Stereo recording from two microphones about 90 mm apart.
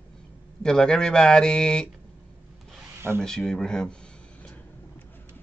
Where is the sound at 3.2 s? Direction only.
5° left (ahead or behind).